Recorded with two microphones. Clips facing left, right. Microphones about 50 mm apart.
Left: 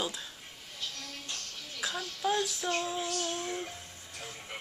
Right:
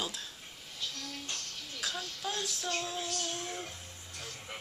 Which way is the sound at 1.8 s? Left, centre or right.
Centre.